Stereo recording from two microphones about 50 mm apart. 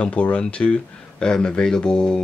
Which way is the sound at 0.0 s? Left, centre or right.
Left.